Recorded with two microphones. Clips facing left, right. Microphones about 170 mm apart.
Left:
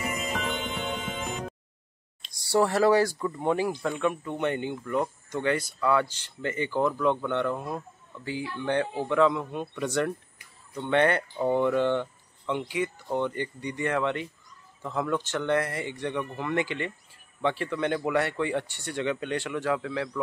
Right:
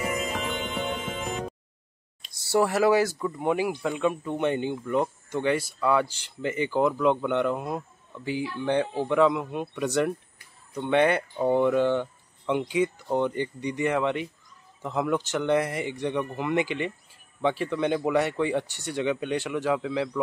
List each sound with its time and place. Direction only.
0.5 s music: centre (ahead or behind)
2.2 s speech: 5° right (ahead or behind)